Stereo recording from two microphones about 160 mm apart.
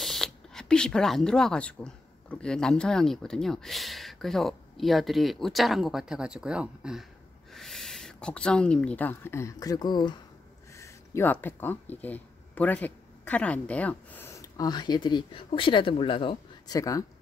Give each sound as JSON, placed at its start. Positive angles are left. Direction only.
{"t": 0.0, "sound": "speech", "side_deg": 0}
{"t": 10.8, "sound": "speech", "side_deg": 15}